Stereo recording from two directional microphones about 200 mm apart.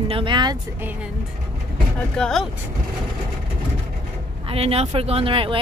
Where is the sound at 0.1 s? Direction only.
25° right (ahead or behind).